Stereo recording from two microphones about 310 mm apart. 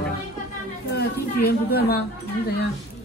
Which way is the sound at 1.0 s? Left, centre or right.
Left.